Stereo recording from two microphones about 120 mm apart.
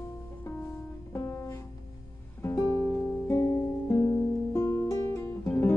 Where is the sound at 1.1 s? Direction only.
25° left (ahead or behind).